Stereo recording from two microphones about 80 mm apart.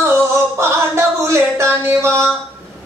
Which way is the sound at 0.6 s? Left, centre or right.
Right.